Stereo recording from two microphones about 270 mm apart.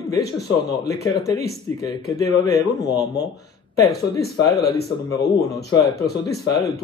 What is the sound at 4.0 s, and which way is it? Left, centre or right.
Speech, left.